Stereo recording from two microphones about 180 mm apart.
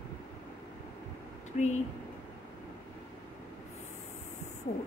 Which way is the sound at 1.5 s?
40° left (ahead or behind).